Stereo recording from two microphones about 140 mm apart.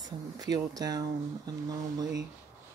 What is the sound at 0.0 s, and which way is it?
Speech, 30° right (ahead or behind).